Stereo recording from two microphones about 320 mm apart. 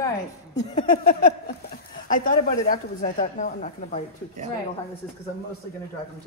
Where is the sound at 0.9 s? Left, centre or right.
Left.